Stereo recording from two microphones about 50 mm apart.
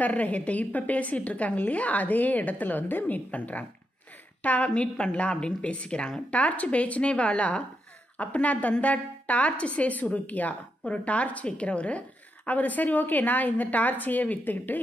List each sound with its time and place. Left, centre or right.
0.0 s a woman's voice: left
6.3 s a woman's voice: left